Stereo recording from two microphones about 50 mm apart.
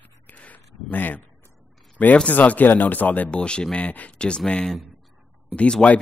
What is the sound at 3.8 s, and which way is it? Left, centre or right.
Speech, left.